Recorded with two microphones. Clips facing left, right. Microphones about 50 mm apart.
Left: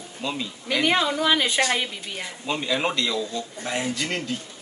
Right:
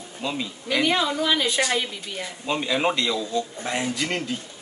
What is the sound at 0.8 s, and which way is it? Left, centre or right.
Speech, centre.